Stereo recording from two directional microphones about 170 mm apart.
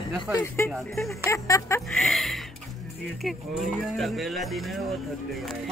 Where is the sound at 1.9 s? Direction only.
Centre (ahead or behind).